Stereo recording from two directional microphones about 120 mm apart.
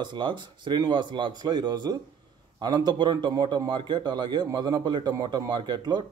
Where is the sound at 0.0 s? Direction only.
40° right (ahead or behind).